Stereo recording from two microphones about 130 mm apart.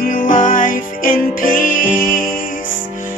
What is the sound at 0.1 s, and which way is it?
Music, 90° left.